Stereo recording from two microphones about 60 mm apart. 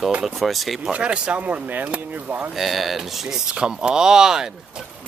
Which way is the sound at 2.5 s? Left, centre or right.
Centre.